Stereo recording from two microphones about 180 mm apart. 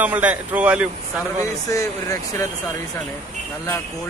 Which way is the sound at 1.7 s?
15° left (ahead or behind).